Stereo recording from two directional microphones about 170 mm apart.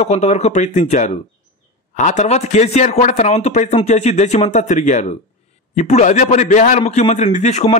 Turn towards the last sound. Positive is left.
turn(degrees=45)  # may be behind; listen again after turning